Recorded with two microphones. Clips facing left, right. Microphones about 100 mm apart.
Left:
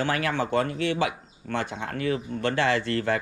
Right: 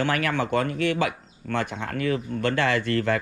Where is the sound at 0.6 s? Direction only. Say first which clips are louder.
Right 2 dB; 25° left (ahead or behind).